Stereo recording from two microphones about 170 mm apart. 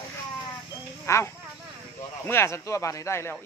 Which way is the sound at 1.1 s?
15° left (ahead or behind).